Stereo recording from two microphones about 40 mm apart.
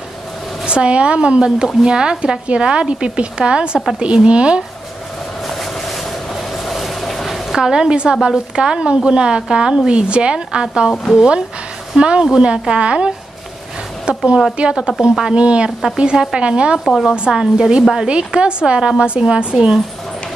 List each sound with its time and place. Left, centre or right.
0.7 s a woman's voice: right
5.5 s vehicle: centre
7.5 s a woman's voice: centre
17.3 s a woman's voice: centre
19.5 s a woman's voice: centre